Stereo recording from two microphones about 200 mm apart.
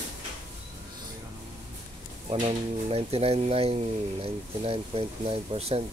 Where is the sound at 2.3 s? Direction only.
30° right (ahead or behind).